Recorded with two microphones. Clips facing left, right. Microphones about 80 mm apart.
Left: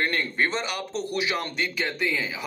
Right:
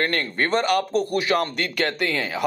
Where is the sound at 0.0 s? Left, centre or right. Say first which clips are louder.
Right 2 dB; right.